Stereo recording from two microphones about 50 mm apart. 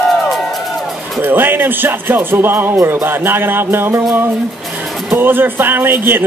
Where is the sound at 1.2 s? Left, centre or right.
Right.